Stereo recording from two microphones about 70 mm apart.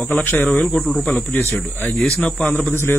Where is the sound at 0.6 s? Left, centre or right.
Centre.